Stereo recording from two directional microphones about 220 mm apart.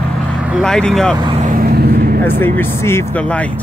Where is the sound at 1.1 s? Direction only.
20° right (ahead or behind).